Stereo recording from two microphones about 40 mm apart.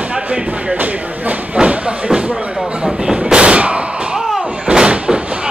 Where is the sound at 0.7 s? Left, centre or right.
Right.